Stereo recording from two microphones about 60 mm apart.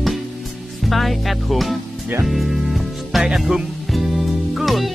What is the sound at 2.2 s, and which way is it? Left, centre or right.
Music, centre.